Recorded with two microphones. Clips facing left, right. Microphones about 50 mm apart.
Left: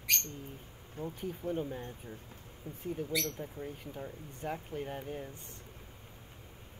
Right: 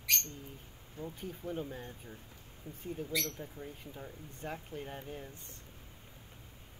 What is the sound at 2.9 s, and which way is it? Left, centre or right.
Speech, centre.